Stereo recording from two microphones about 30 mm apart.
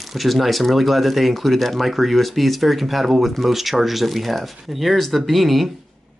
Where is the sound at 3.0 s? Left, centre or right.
Centre.